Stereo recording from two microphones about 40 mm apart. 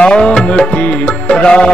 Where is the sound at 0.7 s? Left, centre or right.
Left.